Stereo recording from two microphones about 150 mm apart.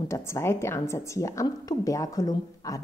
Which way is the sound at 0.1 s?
20° left (ahead or behind).